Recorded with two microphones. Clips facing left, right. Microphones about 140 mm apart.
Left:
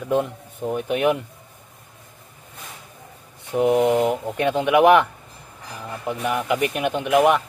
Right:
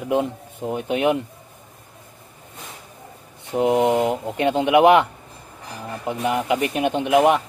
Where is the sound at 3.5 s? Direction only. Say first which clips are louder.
Even; 20° right (ahead or behind).